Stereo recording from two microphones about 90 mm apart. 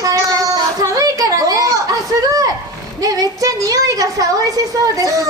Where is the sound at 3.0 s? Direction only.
40° right (ahead or behind).